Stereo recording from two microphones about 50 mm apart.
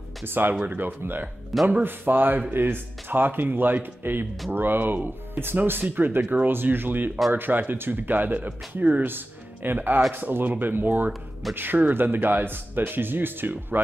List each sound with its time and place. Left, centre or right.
0.2 s speech: right
6.5 s speech: right
9.0 s speech: right